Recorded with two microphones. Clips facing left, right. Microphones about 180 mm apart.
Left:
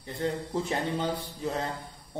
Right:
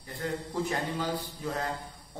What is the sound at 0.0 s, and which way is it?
A man's voice, 25° left (ahead or behind).